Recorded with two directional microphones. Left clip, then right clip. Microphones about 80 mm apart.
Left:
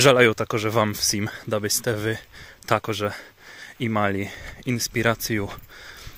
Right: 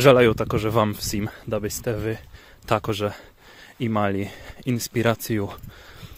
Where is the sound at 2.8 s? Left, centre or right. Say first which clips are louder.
Right 1 dB; right.